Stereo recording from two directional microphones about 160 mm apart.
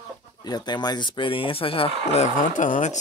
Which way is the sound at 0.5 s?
25° left (ahead or behind).